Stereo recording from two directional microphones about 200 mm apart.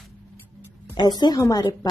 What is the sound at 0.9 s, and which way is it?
Speech, 20° left (ahead or behind).